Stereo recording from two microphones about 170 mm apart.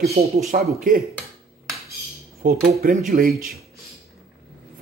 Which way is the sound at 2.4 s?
50° right (ahead or behind).